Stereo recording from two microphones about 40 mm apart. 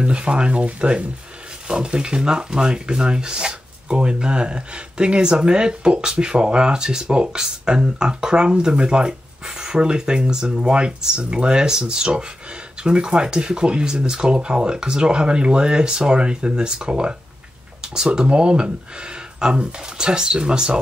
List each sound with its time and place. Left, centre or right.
0.0 s speech: right